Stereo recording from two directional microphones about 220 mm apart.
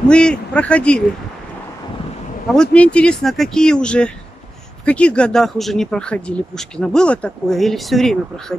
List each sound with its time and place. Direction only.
0.1 s speech: 5° left (ahead or behind)
2.5 s speech: 5° left (ahead or behind)